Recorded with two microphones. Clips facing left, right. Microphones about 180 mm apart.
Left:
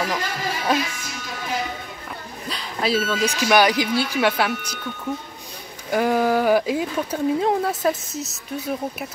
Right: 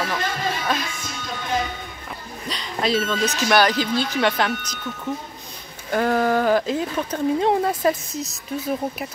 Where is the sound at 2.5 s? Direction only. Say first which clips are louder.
Even; 5° left (ahead or behind).